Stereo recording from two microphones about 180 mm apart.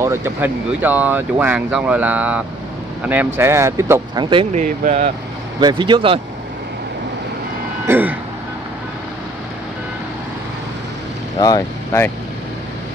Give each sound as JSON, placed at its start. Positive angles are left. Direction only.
{"t": 0.0, "sound": "speech", "side_deg": -15}
{"t": 4.6, "sound": "speech", "side_deg": -40}
{"t": 5.6, "sound": "speech", "side_deg": -25}
{"t": 7.8, "sound": "speech", "side_deg": -10}
{"t": 11.3, "sound": "speech", "side_deg": 20}